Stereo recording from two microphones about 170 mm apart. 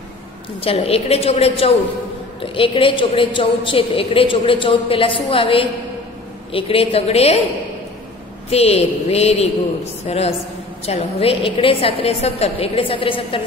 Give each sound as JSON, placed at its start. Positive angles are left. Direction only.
{"t": 0.6, "sound": "a woman's voice", "side_deg": 35}
{"t": 8.5, "sound": "a woman's voice", "side_deg": 35}